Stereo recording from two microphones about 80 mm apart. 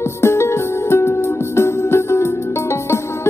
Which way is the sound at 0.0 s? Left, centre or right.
Left.